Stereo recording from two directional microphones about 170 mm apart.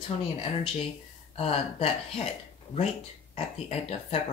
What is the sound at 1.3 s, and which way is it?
Speech, 35° left (ahead or behind).